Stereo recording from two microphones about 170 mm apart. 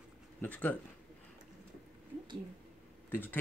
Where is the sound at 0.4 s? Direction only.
10° left (ahead or behind).